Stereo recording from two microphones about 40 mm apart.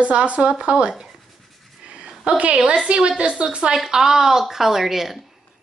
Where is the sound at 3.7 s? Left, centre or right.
Centre.